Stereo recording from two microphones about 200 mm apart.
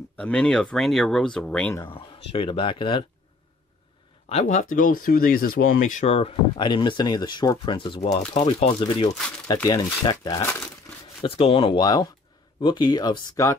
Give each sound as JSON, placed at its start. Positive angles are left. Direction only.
{"t": 0.2, "sound": "speech", "side_deg": 5}
{"t": 1.9, "sound": "speech", "side_deg": 25}
{"t": 4.3, "sound": "speech", "side_deg": 35}
{"t": 5.9, "sound": "speech", "side_deg": 30}